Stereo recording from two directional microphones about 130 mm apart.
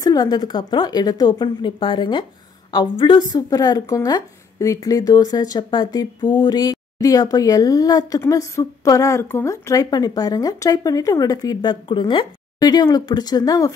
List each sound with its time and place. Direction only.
0.0 s a woman's voice: 30° left (ahead or behind)